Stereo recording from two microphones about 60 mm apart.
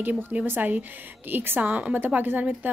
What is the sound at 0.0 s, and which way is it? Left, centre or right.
A woman's voice, right.